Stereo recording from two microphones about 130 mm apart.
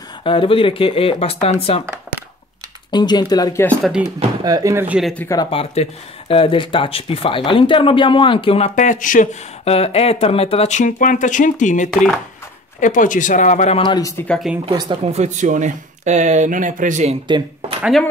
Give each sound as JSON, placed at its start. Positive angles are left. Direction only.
{"t": 0.2, "sound": "speech", "side_deg": 40}
{"t": 2.9, "sound": "speech", "side_deg": 35}
{"t": 4.4, "sound": "speech", "side_deg": -30}
{"t": 5.0, "sound": "speech", "side_deg": 10}
{"t": 5.5, "sound": "speech", "side_deg": 45}
{"t": 8.7, "sound": "speech", "side_deg": 80}
{"t": 9.7, "sound": "speech", "side_deg": 50}
{"t": 12.8, "sound": "speech", "side_deg": 85}
{"t": 13.7, "sound": "speech", "side_deg": 35}
{"t": 14.1, "sound": "speech", "side_deg": 10}
{"t": 14.7, "sound": "speech", "side_deg": -35}
{"t": 15.0, "sound": "speech", "side_deg": -65}
{"t": 17.3, "sound": "speech", "side_deg": -45}